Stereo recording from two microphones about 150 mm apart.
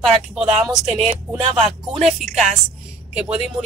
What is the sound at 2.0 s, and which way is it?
Speech, 50° right (ahead or behind).